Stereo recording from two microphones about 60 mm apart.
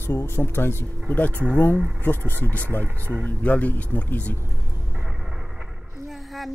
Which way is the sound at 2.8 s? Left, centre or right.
Right.